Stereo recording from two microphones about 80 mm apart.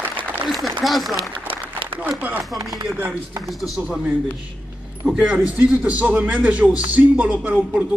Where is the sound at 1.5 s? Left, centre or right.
Right.